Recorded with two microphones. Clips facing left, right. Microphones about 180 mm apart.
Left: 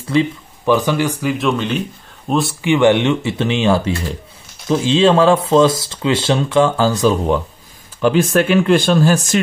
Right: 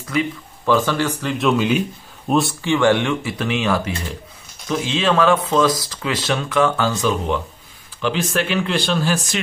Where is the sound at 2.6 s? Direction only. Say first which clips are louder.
Left 7 dB; 20° left (ahead or behind).